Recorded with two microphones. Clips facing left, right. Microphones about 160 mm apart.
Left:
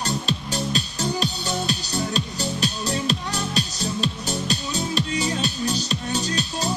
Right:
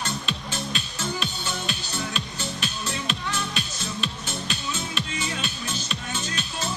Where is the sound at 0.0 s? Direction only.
35° left (ahead or behind).